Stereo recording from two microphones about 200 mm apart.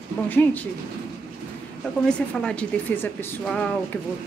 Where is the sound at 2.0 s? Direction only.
5° left (ahead or behind).